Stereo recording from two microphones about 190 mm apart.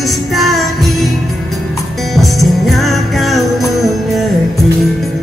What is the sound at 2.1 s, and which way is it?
Music, centre (ahead or behind).